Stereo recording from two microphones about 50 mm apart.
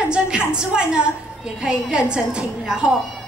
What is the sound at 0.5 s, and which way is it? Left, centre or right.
A woman's voice, centre.